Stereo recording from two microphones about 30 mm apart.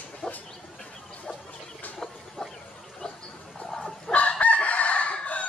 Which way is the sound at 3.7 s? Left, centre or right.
Centre.